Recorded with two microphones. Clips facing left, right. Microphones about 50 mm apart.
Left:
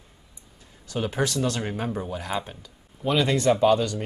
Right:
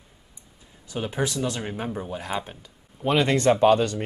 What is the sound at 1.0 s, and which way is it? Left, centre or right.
Speech, centre.